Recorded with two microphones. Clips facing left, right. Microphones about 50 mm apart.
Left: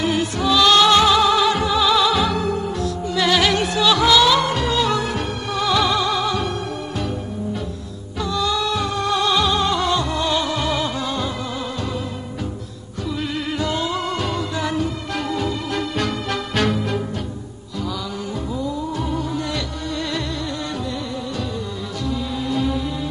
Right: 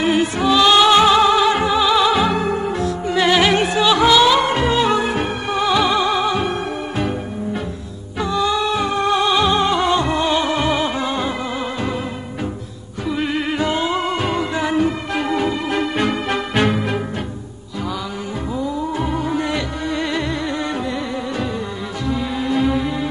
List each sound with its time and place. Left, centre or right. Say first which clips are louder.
0.0 s music: right 4 dB; right
13.1 s music: right 5 dB; right
18.6 s music: right 4 dB; right
22.0 s music: right 3 dB; right